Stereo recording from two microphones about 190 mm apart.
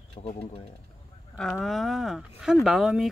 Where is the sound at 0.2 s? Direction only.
30° left (ahead or behind).